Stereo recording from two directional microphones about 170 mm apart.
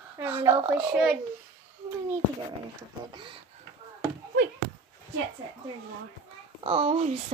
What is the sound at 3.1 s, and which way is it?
Speech, 30° right (ahead or behind).